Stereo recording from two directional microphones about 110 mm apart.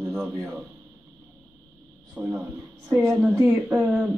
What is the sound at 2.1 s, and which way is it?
Speech, 5° right (ahead or behind).